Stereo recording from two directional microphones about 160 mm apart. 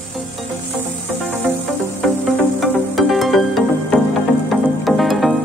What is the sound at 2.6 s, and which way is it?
Music, centre (ahead or behind).